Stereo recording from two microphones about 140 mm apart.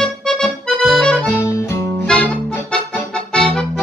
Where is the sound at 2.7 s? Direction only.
5° left (ahead or behind).